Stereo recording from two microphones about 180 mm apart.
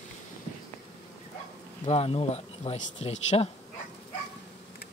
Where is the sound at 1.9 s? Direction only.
35° left (ahead or behind).